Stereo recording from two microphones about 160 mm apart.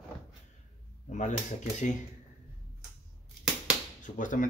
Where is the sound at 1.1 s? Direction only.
50° left (ahead or behind).